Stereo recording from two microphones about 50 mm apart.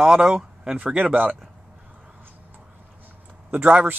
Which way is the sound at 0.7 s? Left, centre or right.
Right.